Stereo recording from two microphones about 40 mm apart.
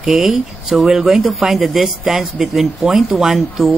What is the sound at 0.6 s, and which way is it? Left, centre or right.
A man's voice, centre.